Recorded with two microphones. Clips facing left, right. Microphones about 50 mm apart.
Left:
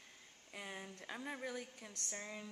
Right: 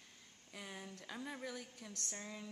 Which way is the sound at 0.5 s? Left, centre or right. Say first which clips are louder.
Left 1 dB; centre.